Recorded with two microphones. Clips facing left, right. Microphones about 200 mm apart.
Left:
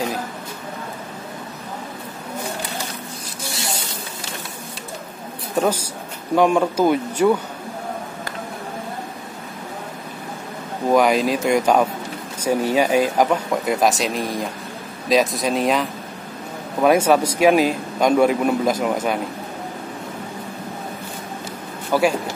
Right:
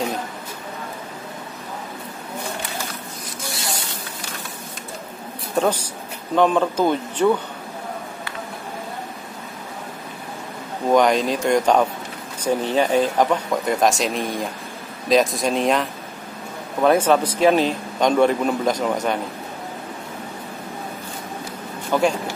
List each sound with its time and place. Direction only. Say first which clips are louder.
5.6 s a man's voice: even; 5° left (ahead or behind)
10.9 s a man's voice: even; 5° left (ahead or behind)
21.9 s a man's voice: left 1 dB; 5° left (ahead or behind)